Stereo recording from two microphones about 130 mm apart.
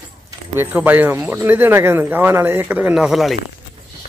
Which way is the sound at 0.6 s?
15° right (ahead or behind).